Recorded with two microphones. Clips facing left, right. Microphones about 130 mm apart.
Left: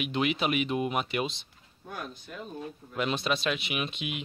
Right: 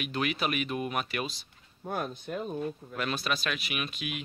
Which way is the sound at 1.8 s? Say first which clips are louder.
Right 6 dB; 50° right (ahead or behind).